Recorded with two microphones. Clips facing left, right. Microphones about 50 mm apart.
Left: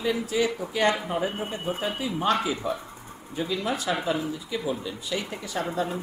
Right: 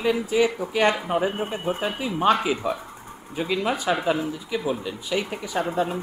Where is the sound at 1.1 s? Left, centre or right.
Right.